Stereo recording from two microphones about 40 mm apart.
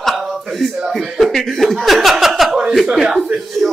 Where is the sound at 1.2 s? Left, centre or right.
Centre.